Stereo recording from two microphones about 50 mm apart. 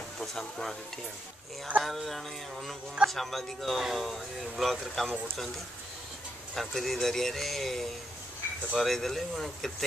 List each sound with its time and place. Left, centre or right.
0.2 s speech: centre
1.8 s speech: centre
6.5 s speech: centre